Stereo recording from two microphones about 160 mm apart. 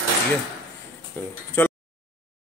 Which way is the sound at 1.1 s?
10° left (ahead or behind).